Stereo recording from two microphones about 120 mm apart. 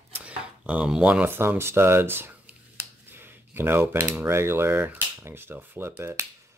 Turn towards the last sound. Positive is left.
turn(degrees=-20)  # may be behind; listen again after turning